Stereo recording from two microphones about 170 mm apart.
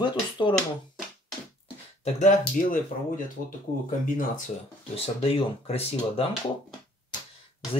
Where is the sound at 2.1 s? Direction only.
45° left (ahead or behind).